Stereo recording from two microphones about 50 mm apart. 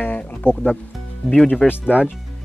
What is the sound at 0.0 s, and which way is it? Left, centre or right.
Music, left.